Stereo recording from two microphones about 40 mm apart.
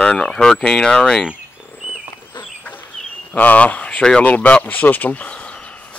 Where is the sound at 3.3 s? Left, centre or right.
Left.